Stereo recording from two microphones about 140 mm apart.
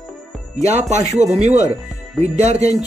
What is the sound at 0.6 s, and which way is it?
Speech, 55° right (ahead or behind).